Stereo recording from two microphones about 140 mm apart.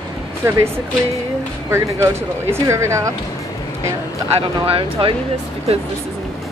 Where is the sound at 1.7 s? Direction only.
20° right (ahead or behind).